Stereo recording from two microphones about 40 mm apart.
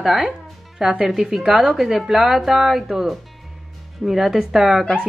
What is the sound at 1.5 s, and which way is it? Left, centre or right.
Speech, right.